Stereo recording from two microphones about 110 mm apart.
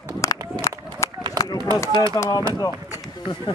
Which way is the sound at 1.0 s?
25° left (ahead or behind).